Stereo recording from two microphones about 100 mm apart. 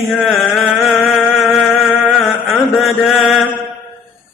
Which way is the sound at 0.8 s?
Centre (ahead or behind).